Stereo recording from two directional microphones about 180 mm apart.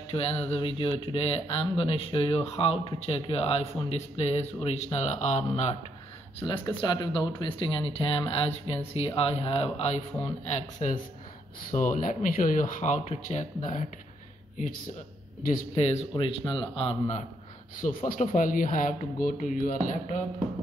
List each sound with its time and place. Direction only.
0.1 s speech: 35° left (ahead or behind)
6.4 s speech: 30° left (ahead or behind); by 13.8 s 45° left (ahead or behind)
15.7 s speech: 35° left (ahead or behind)
17.7 s speech: 50° left (ahead or behind)